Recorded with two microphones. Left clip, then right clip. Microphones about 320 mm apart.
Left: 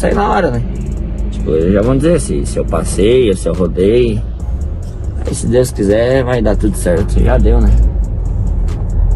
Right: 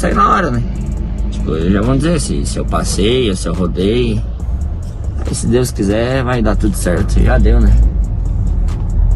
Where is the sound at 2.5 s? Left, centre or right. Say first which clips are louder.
Left 2 dB; right.